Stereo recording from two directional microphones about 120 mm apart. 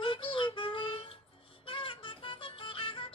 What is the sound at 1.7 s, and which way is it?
Music, 45° left (ahead or behind).